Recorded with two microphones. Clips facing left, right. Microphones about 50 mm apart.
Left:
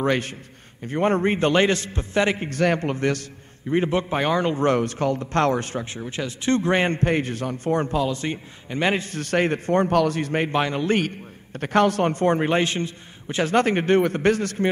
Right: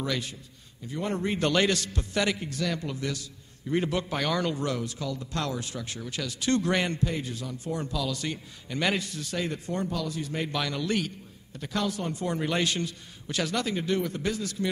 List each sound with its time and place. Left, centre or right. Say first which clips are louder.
0.0 s a man's voice: left 9 dB; left
3.6 s a man's voice: left 6 dB; left
4.6 s a man's voice: left 11 dB; left
5.9 s a man's voice: left 5 dB; left
9.2 s a man's voice: left 10 dB; left